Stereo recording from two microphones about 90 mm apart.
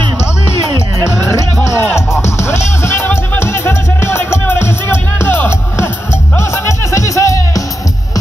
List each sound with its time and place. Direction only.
1.0 s music: 30° left (ahead or behind)